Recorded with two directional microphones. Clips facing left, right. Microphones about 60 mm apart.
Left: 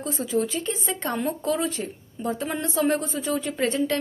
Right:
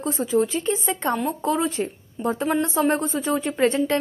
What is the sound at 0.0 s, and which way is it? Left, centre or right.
Speech, right.